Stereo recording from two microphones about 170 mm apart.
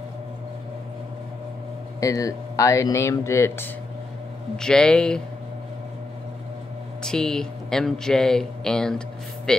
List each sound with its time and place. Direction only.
2.0 s speech: 20° left (ahead or behind); by 5.2 s 5° left (ahead or behind)
7.0 s speech: 5° left (ahead or behind)